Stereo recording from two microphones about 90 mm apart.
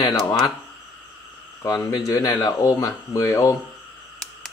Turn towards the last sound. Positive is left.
turn(degrees=40)  # may be behind; listen again after turning